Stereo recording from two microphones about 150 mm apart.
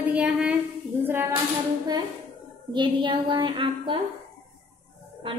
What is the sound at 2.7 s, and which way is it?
A woman's voice, 30° right (ahead or behind).